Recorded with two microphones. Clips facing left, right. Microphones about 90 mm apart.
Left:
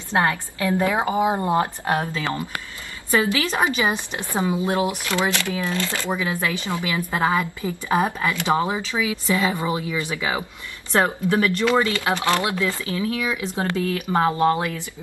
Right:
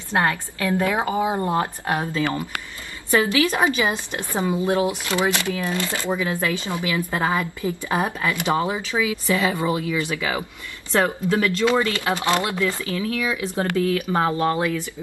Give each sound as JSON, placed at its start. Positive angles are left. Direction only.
{"t": 0.1, "sound": "a woman's voice", "side_deg": 20}
{"t": 4.8, "sound": "speech", "side_deg": -20}
{"t": 6.0, "sound": "speech", "side_deg": 15}
{"t": 12.2, "sound": "speech", "side_deg": -20}
{"t": 12.8, "sound": "speech", "side_deg": 20}